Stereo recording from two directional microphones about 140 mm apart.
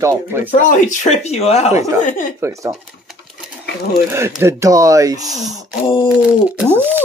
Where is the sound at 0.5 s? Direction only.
65° left (ahead or behind).